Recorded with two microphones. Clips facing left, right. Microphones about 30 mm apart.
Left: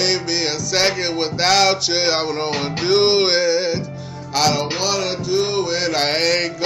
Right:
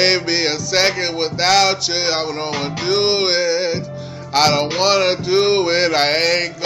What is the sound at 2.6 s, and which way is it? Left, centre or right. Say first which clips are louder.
Music: left 2 dB; centre.